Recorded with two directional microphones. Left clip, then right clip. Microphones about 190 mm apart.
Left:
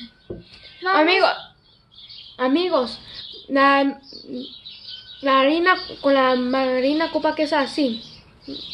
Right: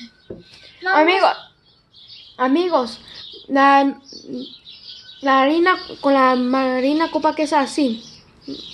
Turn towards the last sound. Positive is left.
turn(degrees=-40)  # may be behind; listen again after turning